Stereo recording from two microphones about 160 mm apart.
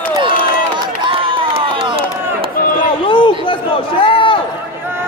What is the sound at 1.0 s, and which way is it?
Crowd, 30° right (ahead or behind).